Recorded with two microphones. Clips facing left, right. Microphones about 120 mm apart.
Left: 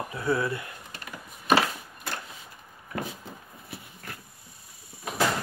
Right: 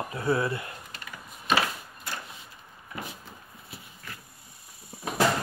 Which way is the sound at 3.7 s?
50° left (ahead or behind).